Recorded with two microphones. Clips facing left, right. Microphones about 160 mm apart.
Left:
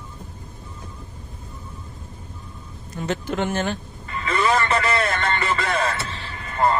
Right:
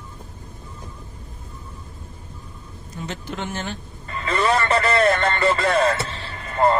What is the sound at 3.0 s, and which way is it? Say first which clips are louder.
Speech: left 6 dB; 55° left (ahead or behind).